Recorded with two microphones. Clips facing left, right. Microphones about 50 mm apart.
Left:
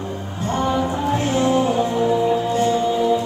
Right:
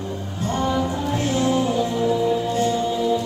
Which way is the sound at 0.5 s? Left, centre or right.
Left.